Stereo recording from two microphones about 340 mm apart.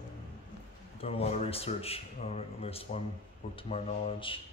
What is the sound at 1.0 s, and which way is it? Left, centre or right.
A man's voice, centre.